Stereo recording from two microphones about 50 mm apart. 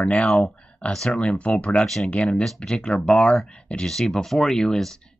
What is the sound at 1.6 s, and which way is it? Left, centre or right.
Speech, left.